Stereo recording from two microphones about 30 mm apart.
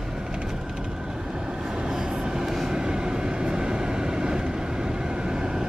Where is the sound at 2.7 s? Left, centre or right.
Right.